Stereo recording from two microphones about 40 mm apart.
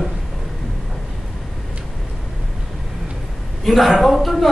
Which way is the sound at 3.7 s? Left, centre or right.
Centre.